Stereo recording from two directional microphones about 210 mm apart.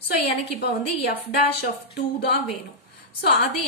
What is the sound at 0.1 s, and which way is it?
Speech, 50° left (ahead or behind).